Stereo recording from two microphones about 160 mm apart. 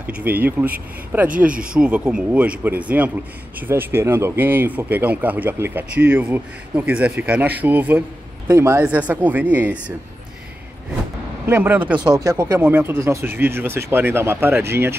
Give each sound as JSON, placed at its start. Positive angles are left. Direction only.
{"t": 0.0, "sound": "speech", "side_deg": -10}
{"t": 11.4, "sound": "speech", "side_deg": -15}